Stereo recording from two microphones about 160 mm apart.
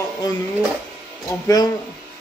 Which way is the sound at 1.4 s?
25° left (ahead or behind).